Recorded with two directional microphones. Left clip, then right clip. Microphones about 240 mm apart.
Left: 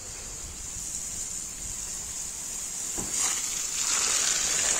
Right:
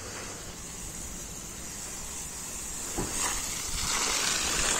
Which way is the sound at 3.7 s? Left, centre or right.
Centre.